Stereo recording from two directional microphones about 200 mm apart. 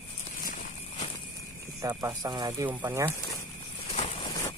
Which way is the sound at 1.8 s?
15° right (ahead or behind).